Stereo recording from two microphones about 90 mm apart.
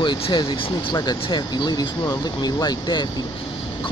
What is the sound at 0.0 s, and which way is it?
Speech, 60° left (ahead or behind).